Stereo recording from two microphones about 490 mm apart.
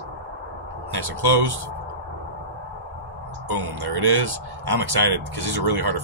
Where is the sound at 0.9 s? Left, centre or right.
Right.